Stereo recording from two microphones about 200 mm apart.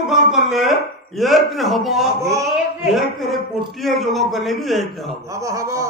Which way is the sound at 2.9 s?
Centre (ahead or behind).